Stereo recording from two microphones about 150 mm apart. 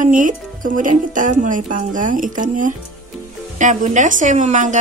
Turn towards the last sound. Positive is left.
turn(degrees=-55)  # may be behind; listen again after turning